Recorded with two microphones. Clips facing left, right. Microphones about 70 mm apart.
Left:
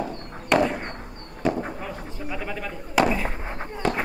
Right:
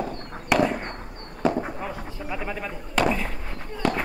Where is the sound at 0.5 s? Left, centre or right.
Centre.